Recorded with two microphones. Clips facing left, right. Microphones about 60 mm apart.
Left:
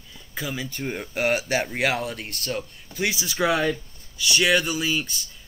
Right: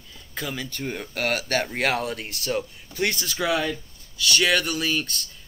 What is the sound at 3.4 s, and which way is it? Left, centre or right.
Speech, left.